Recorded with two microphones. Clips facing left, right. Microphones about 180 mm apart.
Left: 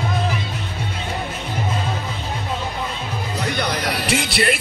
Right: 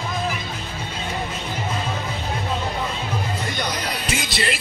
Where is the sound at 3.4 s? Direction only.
70° left (ahead or behind).